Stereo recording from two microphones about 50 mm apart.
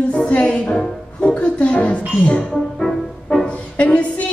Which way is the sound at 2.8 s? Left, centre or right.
Centre.